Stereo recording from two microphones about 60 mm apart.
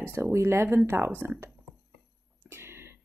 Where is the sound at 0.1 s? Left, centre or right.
Right.